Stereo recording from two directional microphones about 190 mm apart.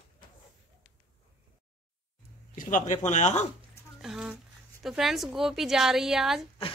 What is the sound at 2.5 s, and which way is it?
Speech, 45° left (ahead or behind).